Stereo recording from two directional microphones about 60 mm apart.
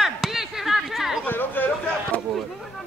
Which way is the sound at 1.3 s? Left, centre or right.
Left.